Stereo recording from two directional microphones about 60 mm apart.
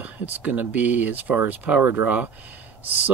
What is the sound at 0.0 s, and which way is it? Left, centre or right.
Speech, right.